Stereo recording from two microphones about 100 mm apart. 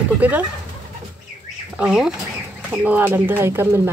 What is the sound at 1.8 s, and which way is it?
Speech, 5° right (ahead or behind).